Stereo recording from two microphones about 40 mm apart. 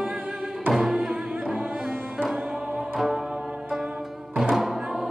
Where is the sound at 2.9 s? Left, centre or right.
Centre.